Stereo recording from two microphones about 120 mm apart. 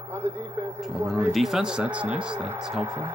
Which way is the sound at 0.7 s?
Centre (ahead or behind).